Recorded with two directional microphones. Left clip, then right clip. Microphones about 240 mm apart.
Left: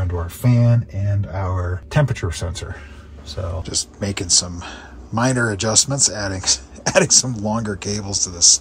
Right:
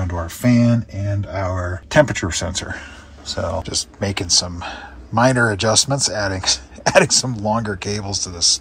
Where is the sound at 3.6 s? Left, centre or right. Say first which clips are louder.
Right 2 dB; centre.